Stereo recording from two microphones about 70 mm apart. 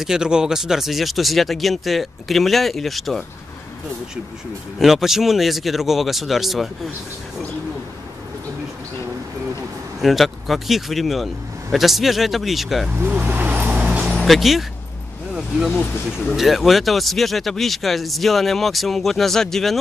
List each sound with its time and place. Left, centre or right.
0.0 s speech: centre
4.7 s speech: centre
10.0 s speech: centre
12.9 s vehicle: right
14.0 s vehicle: centre
15.3 s speech: centre